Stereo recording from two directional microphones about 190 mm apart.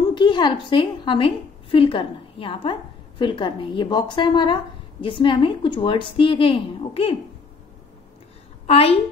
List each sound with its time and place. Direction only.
0.1 s a woman's voice: 25° left (ahead or behind)
8.6 s a woman's voice: 30° left (ahead or behind)